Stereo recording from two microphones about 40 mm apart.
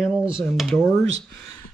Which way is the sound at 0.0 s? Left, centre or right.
Centre.